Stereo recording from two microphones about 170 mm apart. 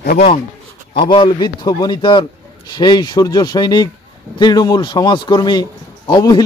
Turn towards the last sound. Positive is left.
turn(degrees=25)  # may be behind; listen again after turning